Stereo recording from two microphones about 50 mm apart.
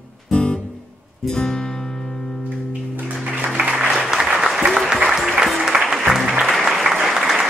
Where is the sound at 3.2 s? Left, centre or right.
Right.